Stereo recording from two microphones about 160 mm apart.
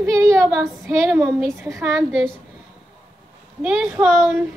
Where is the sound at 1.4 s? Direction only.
20° right (ahead or behind).